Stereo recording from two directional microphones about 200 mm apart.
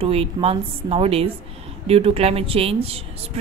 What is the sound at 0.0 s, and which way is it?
A woman's voice, 30° right (ahead or behind).